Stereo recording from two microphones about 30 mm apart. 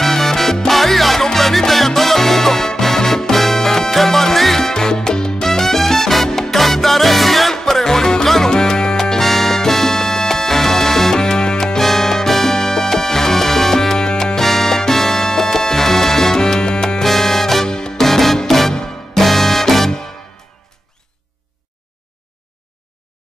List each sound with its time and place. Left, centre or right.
0.0 s salsa music: centre
1.2 s music: centre
4.6 s salsa music: centre
5.5 s salsa music: centre
7.5 s music: centre
9.2 s music: centre
11.1 s music: left
11.8 s music: centre
13.9 s music: left
16.3 s salsa music: left
17.0 s music: centre
17.6 s music: left
17.9 s music: centre
19.2 s music: centre